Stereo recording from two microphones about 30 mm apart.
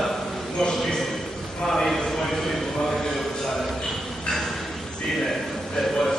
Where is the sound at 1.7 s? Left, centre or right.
Centre.